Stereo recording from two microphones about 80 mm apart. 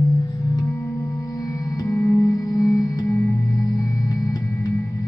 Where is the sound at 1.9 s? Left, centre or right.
Left.